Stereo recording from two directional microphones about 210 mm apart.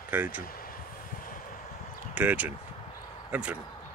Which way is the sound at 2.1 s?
5° right (ahead or behind).